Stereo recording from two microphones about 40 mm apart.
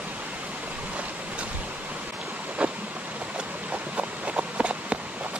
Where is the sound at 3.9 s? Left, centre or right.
Right.